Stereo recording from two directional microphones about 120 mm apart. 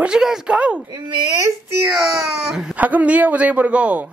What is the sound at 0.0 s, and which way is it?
Speech, 5° right (ahead or behind).